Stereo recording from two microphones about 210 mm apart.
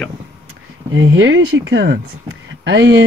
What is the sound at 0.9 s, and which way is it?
Speech, 65° right (ahead or behind).